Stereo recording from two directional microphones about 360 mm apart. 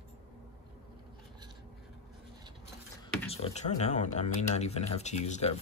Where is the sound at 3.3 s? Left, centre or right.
Centre.